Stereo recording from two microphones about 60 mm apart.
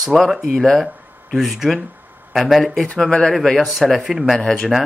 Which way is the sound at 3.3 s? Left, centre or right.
Centre.